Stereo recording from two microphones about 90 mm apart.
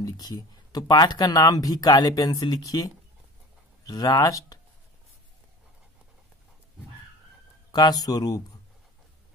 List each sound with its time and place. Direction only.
0.0 s speech: 45° left (ahead or behind)
7.7 s speech: 50° left (ahead or behind)